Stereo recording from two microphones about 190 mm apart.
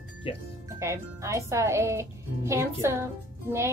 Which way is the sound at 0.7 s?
15° right (ahead or behind).